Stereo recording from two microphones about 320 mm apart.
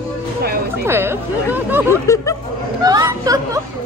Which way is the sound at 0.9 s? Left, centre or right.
Centre.